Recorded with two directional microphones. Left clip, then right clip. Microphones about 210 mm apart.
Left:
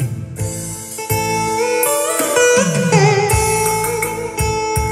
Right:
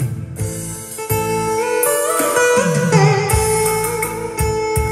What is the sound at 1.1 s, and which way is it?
Music, centre (ahead or behind).